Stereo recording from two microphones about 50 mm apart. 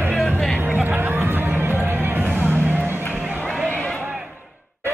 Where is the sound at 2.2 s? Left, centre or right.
Right.